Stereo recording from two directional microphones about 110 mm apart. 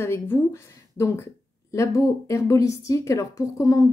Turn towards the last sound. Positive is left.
turn(degrees=35)  # may be behind; listen again after turning